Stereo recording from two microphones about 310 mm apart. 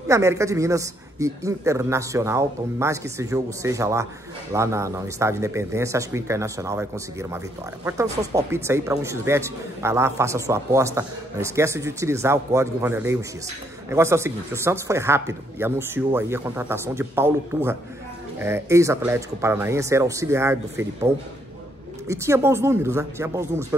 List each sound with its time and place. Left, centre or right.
0.1 s speech: centre